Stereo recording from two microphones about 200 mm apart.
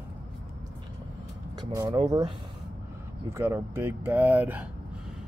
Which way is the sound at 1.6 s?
20° right (ahead or behind).